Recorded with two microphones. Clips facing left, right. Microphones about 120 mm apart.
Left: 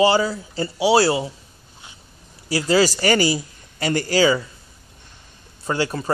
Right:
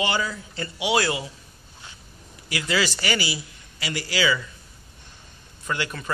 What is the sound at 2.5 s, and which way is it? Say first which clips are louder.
A man's voice: left 8 dB; 35° left (ahead or behind).